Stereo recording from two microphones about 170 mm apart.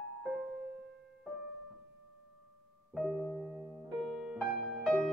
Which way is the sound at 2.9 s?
5° left (ahead or behind).